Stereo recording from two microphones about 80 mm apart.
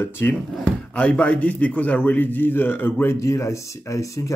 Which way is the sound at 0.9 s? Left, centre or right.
Centre.